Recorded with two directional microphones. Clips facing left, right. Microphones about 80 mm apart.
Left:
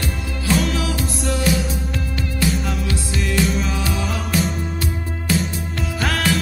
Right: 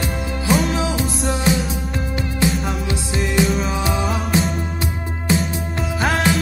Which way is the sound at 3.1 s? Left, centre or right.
Right.